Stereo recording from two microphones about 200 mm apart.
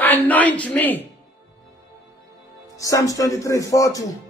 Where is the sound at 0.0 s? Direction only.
10° left (ahead or behind).